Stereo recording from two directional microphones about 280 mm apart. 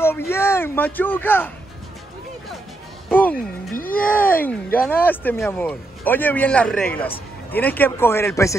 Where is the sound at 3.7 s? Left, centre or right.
Left.